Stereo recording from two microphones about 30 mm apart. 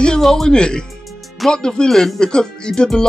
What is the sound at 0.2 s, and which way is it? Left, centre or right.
Speech, centre.